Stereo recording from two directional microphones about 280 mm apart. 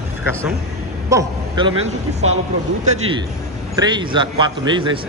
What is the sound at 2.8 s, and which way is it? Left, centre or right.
A man's voice, right.